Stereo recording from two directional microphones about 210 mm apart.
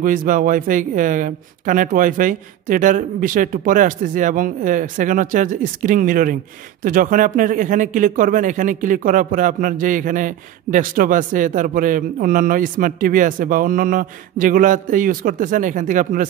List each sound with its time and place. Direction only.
0.0 s a man's voice: 40° right (ahead or behind)